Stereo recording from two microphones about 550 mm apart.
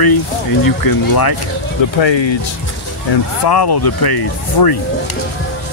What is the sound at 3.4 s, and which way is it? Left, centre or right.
Speech, left.